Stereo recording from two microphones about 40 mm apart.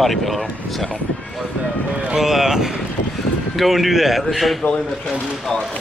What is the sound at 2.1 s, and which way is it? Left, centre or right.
Speech, centre.